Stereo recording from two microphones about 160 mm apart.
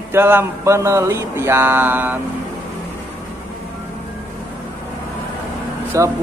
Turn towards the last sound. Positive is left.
turn(degrees=-20)  # may be behind; listen again after turning